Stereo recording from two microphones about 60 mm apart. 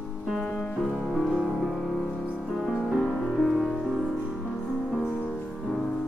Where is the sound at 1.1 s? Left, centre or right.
Centre.